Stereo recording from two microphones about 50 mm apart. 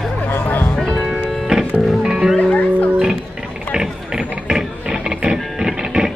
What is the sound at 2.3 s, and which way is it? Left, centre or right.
Music, left.